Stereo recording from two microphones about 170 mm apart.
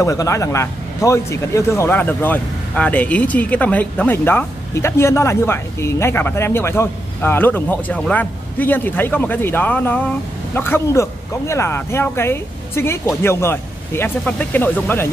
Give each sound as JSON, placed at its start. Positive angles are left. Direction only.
{"t": 0.0, "sound": "a man's voice", "side_deg": 20}